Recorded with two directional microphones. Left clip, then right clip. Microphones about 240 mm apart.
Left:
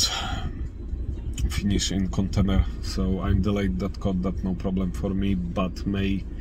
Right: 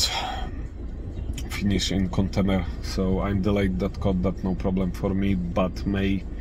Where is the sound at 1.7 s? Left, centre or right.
Centre.